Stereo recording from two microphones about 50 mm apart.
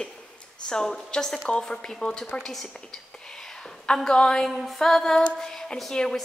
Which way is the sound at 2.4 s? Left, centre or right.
Centre.